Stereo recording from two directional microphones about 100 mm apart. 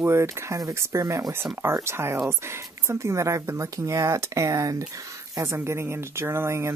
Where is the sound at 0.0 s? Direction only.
30° right (ahead or behind).